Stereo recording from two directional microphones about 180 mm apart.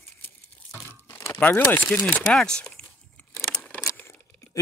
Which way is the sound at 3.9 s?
10° left (ahead or behind).